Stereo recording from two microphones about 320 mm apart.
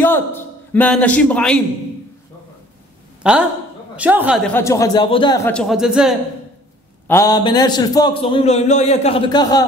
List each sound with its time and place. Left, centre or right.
0.0 s a man's voice: centre
3.2 s a sound: centre
3.9 s a man's voice: centre
4.6 s a man's voice: centre
7.1 s a man's voice: centre